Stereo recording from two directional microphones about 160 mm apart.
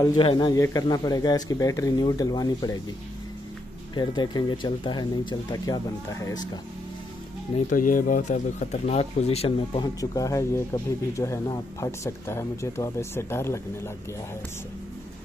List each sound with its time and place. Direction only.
0.0 s speech: 30° left (ahead or behind)
3.9 s speech: 25° left (ahead or behind)
7.7 s speech: 55° left (ahead or behind); by 9.8 s 40° left (ahead or behind)
9.9 s speech: 20° left (ahead or behind)